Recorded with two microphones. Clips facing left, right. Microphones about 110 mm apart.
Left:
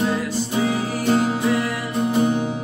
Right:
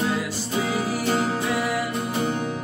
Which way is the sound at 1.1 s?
Centre (ahead or behind).